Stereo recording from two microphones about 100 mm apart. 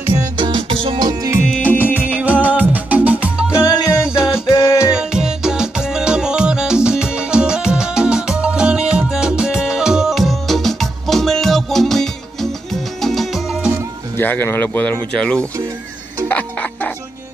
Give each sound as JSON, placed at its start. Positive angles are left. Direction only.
{"t": 0.4, "sound": "music", "side_deg": -55}
{"t": 0.9, "sound": "music", "side_deg": -40}
{"t": 1.6, "sound": "music", "side_deg": 15}
{"t": 2.0, "sound": "music", "side_deg": -15}
{"t": 3.5, "sound": "music", "side_deg": 35}
{"t": 4.9, "sound": "music", "side_deg": -5}
{"t": 14.1, "sound": "speech", "side_deg": 20}
{"t": 16.3, "sound": "music", "side_deg": 15}